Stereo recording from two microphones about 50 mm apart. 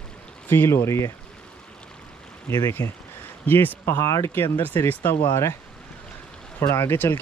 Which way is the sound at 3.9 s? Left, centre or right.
Left.